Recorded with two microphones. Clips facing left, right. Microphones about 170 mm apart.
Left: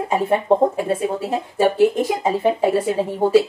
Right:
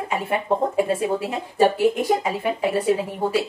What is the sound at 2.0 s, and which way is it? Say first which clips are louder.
A woman's voice: left 3 dB; 25° left (ahead or behind).